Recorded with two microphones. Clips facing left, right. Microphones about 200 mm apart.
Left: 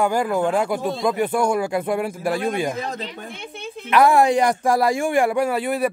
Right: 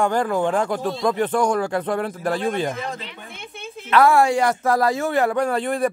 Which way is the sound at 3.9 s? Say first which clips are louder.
Left 1 dB; 15° left (ahead or behind).